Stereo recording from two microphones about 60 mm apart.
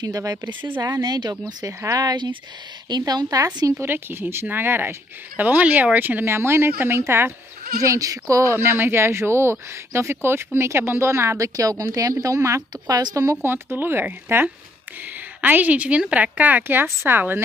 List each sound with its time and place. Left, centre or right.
0.0 s speech: right
1.9 s a woman's voice: right
3.8 s speech: right
5.4 s speech: right
7.8 s speech: right
8.5 s speech: right
12.4 s speech: right
12.8 s speech: right
13.4 s speech: right